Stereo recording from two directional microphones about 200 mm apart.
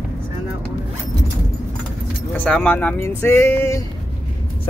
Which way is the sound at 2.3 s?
5° left (ahead or behind).